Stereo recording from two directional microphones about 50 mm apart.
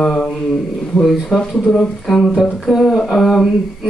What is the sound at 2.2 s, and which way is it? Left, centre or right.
Speech, centre.